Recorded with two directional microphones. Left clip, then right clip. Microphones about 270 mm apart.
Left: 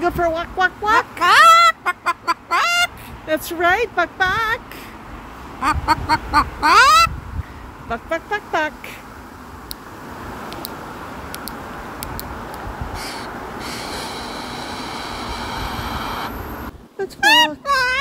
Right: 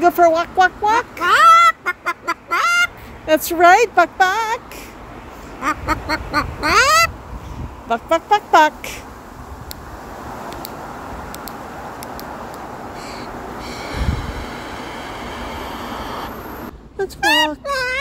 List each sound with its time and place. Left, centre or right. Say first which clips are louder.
0.0 s a sound: right 6 dB; centre
3.3 s speech: right 6 dB; right
5.6 s quack: left 3 dB; centre
7.9 s speech: right 7 dB; right
13.0 s train: left 1 dB; left
17.0 s quack: left 2 dB; centre